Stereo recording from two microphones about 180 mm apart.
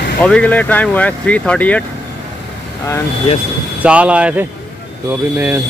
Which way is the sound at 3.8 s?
5° right (ahead or behind).